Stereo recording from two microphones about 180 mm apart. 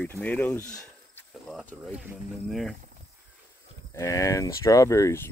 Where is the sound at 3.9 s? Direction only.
15° left (ahead or behind).